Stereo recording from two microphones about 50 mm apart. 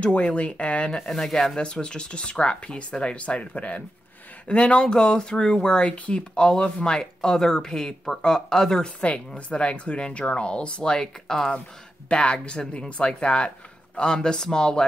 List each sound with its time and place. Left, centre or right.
0.0 s speech: left
1.0 s speech: centre
9.5 s speech: left